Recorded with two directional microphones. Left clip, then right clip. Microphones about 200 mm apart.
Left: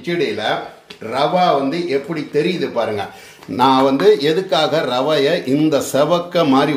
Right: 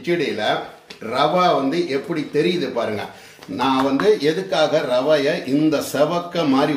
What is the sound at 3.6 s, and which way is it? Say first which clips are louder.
Speech: left 6 dB; 35° left (ahead or behind).